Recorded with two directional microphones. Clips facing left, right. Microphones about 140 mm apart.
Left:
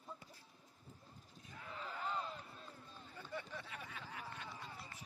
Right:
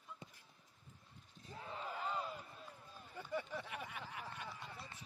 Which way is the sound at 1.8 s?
10° right (ahead or behind).